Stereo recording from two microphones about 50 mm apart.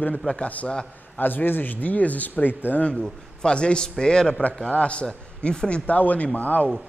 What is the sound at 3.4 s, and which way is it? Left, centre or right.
A man's voice, centre.